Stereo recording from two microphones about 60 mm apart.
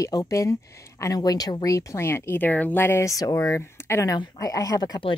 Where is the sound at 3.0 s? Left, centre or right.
Left.